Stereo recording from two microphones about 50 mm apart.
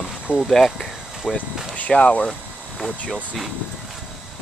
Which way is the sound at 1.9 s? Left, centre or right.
Left.